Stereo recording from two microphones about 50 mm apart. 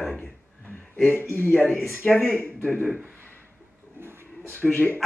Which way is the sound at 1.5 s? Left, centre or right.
Left.